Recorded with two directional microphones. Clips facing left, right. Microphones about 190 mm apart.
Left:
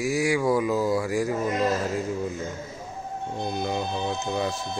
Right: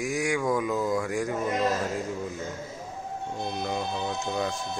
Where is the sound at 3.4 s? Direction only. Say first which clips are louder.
Left 3 dB; centre (ahead or behind).